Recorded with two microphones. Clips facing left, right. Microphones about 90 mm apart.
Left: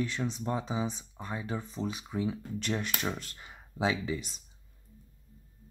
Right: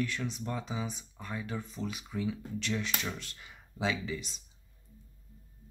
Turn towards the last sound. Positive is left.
turn(degrees=35)  # may be behind; listen again after turning